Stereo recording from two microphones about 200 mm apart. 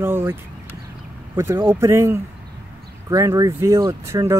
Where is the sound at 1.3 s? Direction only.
10° right (ahead or behind).